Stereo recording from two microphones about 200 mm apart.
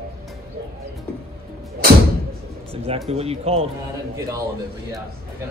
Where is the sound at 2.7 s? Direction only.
30° right (ahead or behind).